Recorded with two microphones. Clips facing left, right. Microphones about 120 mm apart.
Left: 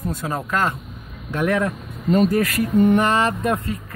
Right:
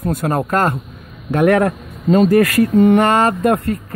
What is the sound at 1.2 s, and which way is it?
Speech, 65° right (ahead or behind).